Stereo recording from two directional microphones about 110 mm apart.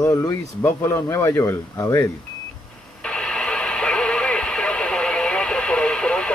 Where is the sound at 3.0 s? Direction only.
10° left (ahead or behind).